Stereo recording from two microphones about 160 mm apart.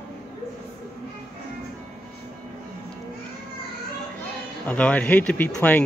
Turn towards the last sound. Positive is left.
turn(degrees=10)  # may be behind; listen again after turning